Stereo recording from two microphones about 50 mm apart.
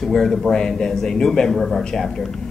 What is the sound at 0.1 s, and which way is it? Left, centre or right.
A man's voice, centre.